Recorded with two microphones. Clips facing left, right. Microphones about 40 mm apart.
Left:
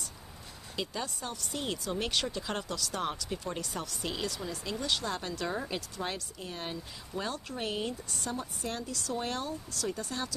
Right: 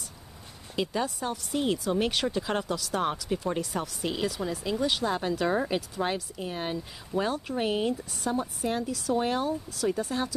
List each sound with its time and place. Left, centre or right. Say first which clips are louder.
0.7 s speech: right 7 dB; centre
5.5 s speech: right 8 dB; right